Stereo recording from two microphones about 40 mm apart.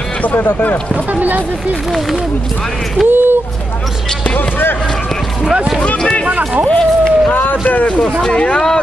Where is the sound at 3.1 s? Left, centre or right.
Right.